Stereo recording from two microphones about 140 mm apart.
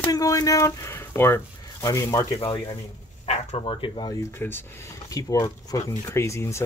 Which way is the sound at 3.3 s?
55° left (ahead or behind).